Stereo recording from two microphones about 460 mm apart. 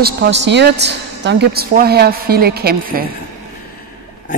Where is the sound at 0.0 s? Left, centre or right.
Right.